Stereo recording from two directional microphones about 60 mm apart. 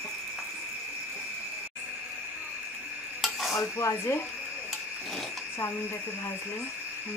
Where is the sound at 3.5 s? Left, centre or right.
Left.